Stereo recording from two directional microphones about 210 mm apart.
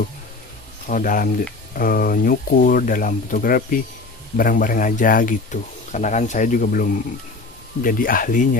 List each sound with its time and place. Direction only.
0.8 s speech: 40° left (ahead or behind)